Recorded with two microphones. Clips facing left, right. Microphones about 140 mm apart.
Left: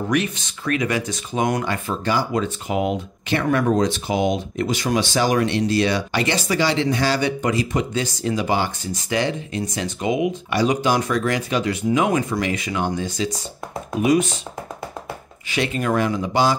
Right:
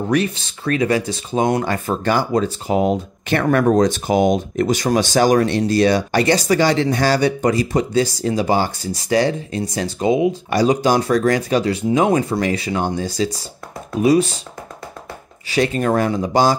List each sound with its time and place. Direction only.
0.1 s speech: 35° right (ahead or behind)
2.3 s speech: 35° right (ahead or behind)
3.3 s speech: 50° right (ahead or behind); by 14.4 s 35° right (ahead or behind)
15.5 s speech: 40° right (ahead or behind)